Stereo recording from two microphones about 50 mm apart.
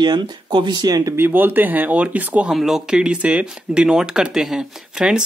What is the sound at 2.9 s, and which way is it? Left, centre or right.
Speech, centre.